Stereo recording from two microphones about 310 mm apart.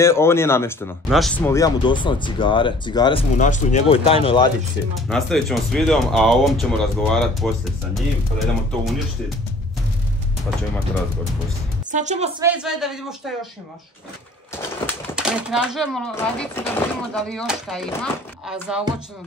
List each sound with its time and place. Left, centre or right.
0.0 s speech: centre
5.0 s speech: centre
11.9 s a woman's voice: right
12.4 s speech: centre
15.1 s speech: centre